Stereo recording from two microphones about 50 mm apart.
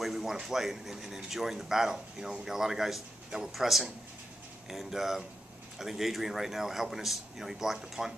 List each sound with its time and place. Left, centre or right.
0.0 s a man's voice: centre